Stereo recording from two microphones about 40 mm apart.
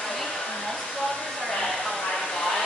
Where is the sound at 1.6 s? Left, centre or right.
Centre.